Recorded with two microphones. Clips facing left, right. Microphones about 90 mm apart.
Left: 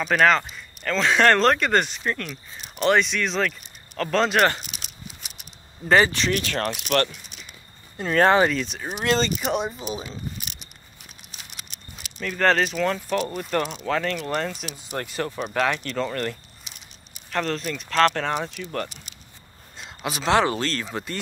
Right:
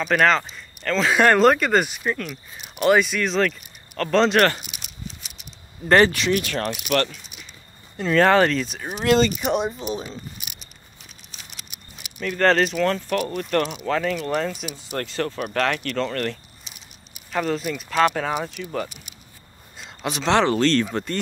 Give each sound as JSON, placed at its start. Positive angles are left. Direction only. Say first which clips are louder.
{"t": 0.0, "sound": "speech", "louder": "even", "side_deg": 0}
{"t": 5.9, "sound": "speech", "louder": "right 2 dB", "side_deg": 0}
{"t": 6.1, "sound": "speech", "louder": "right 2 dB", "side_deg": 40}
{"t": 8.1, "sound": "speech", "louder": "right 1 dB", "side_deg": 30}
{"t": 8.5, "sound": "speech", "louder": "right 2 dB", "side_deg": 0}
{"t": 9.0, "sound": "speech", "louder": "right 5 dB", "side_deg": 35}
{"t": 9.4, "sound": "speech", "louder": "right 3 dB", "side_deg": 0}
{"t": 11.7, "sound": "speech", "louder": "left 1 dB", "side_deg": -5}
{"t": 13.7, "sound": "speech", "louder": "right 2 dB", "side_deg": -5}
{"t": 15.0, "sound": "speech", "louder": "right 2 dB", "side_deg": 10}
{"t": 17.1, "sound": "speech", "louder": "right 2 dB", "side_deg": -5}
{"t": 19.8, "sound": "speech", "louder": "right 2 dB", "side_deg": 5}